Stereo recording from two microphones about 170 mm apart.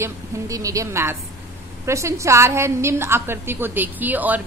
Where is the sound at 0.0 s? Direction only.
20° right (ahead or behind).